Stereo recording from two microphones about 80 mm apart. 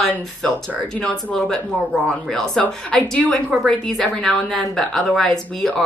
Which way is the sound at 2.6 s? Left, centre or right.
Centre.